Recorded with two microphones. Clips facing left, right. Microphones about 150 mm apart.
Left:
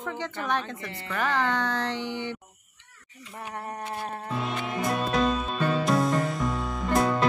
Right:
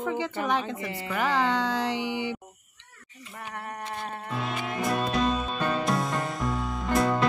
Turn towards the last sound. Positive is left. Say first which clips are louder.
# left 1 dB
turn(degrees=0)  # may be behind; listen again after turning